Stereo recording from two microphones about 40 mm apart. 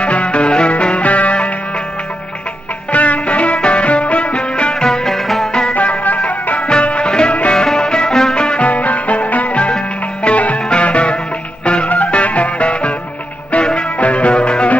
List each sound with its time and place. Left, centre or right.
0.0 s music: left
2.9 s music: left; by 5.5 s centre
5.5 s music: left
5.8 s music: left
13.9 s music: left